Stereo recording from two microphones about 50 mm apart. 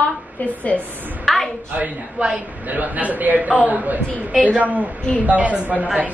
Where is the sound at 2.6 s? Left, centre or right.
Right.